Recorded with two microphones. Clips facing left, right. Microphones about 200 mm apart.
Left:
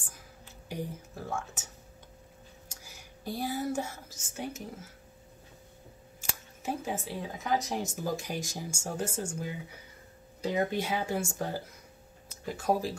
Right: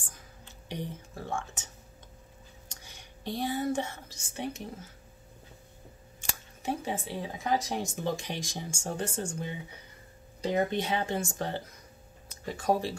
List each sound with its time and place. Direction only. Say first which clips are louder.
0.7 s speech: even; 5° left (ahead or behind)
2.7 s speech: even; 5° left (ahead or behind)
6.6 s speech: right 1 dB; 5° left (ahead or behind)
7.2 s speech: right 1 dB; 30° right (ahead or behind)
8.1 s speech: even; 5° left (ahead or behind)